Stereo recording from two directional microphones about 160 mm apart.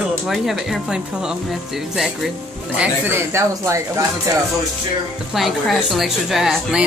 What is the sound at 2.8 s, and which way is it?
Speech, 15° right (ahead or behind).